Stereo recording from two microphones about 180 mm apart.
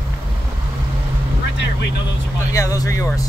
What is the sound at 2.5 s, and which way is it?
Speech, 20° left (ahead or behind).